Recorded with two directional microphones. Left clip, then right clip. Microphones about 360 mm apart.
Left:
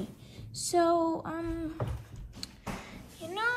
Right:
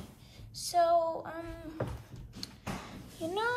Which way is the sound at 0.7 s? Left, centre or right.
Centre.